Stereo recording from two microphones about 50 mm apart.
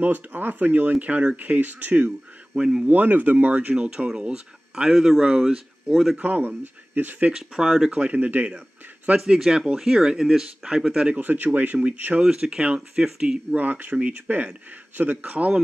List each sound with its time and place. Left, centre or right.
0.0 s speech: right
2.5 s speech: centre
2.9 s speech: right
3.7 s speech: right
4.9 s speech: centre
6.1 s speech: right
7.3 s speech: centre
7.9 s speech: right
9.2 s speech: centre
11.1 s speech: right
12.2 s speech: centre
13.6 s speech: right